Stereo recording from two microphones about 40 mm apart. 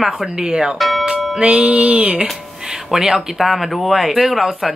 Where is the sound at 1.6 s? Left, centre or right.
Right.